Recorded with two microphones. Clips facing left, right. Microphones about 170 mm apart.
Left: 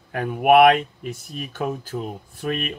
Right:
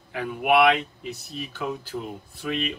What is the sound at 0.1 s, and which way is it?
A man's voice, 50° left (ahead or behind).